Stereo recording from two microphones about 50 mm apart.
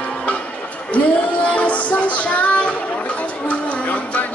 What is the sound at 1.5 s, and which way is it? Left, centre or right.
Music, left.